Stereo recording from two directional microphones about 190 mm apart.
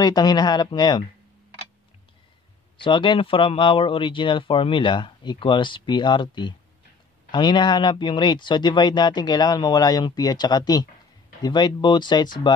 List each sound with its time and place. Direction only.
0.0 s speech: 20° left (ahead or behind)
2.8 s speech: 25° left (ahead or behind)